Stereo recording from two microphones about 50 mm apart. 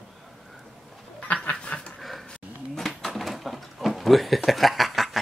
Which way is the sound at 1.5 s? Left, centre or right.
Centre.